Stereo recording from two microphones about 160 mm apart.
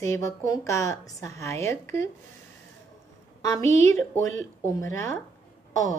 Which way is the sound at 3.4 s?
20° left (ahead or behind).